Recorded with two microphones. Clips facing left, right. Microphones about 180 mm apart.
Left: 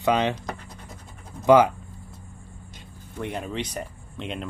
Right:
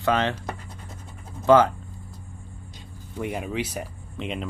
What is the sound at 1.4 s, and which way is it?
Speech, 15° left (ahead or behind).